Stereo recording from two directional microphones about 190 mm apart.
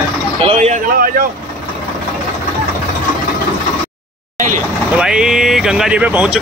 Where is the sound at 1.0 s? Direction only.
50° right (ahead or behind).